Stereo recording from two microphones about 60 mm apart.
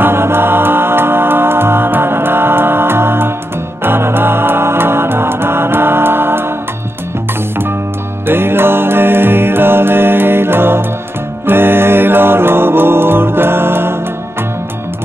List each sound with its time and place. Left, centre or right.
0.0 s music: right
8.3 s music: right